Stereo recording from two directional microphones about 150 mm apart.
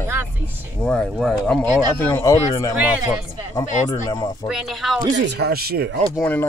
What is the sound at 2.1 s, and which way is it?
Speech, 20° left (ahead or behind).